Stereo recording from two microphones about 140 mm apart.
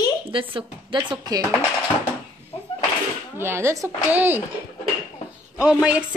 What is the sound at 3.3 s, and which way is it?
A woman's voice, 15° right (ahead or behind).